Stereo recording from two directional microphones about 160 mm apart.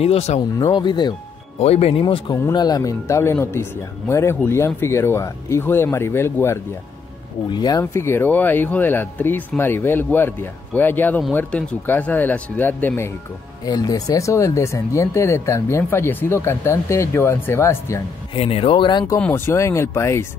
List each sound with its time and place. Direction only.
0.0 s speech: 40° left (ahead or behind)
0.6 s speech: 30° left (ahead or behind)
1.6 s speech: 40° left (ahead or behind)
2.3 s speech: 20° left (ahead or behind)
7.4 s speech: 25° left (ahead or behind)
7.8 s speech: 15° left (ahead or behind)
13.7 s speech: 25° left (ahead or behind)
18.3 s speech: 35° left (ahead or behind)
19.1 s speech: 10° left (ahead or behind)